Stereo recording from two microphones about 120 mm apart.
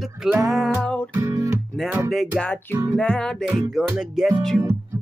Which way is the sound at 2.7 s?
25° right (ahead or behind).